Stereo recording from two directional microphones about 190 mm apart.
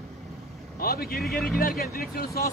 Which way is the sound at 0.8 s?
50° left (ahead or behind).